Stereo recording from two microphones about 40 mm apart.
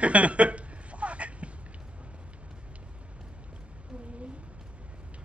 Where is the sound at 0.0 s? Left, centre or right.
Right.